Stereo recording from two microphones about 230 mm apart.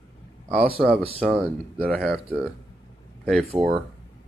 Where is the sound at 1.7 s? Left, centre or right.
Centre.